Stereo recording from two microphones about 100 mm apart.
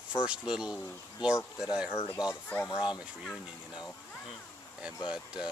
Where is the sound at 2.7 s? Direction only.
50° left (ahead or behind).